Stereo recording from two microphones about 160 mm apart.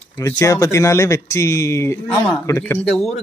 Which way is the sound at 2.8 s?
5° left (ahead or behind).